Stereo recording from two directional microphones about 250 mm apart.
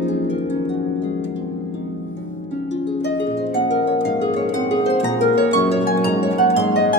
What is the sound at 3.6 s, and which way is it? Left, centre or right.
Harp, left.